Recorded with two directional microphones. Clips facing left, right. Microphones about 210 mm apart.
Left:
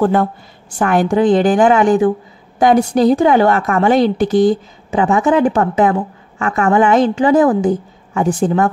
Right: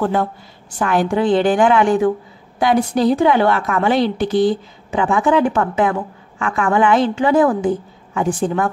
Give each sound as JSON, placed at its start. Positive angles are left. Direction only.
{"t": 0.0, "sound": "a woman's voice", "side_deg": 50}
{"t": 2.6, "sound": "a woman's voice", "side_deg": 45}